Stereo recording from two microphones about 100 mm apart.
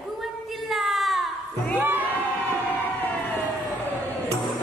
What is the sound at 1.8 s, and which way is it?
Crowd, 20° right (ahead or behind).